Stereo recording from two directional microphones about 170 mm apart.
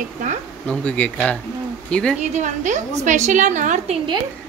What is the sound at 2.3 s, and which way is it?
A woman's voice, 45° right (ahead or behind).